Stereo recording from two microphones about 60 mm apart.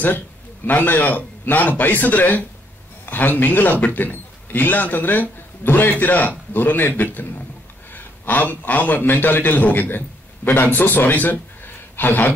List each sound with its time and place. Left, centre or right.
0.7 s a man's voice: left